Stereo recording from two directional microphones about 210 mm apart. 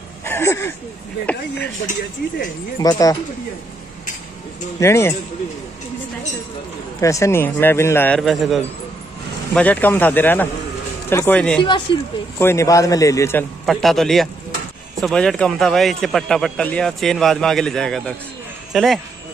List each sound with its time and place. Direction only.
0.2 s speech: 10° left (ahead or behind)
1.9 s speech: 40° left (ahead or behind)
2.8 s a man's voice: 15° left (ahead or behind)
4.7 s a man's voice: 15° left (ahead or behind)
7.0 s a man's voice: 15° left (ahead or behind)
11.6 s a man's voice: 20° left (ahead or behind); by 18.9 s centre (ahead or behind)